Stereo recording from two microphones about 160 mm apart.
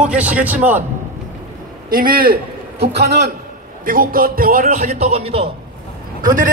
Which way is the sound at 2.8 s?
90° right.